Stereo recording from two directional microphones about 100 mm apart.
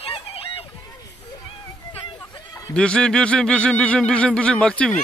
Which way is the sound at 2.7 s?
10° left (ahead or behind).